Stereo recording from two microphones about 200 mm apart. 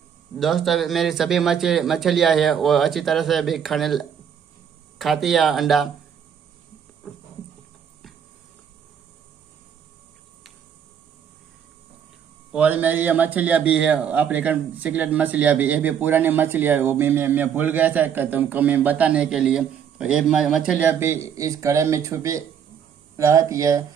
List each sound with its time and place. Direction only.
0.4 s speech: centre (ahead or behind)
12.5 s a man's voice: 10° right (ahead or behind)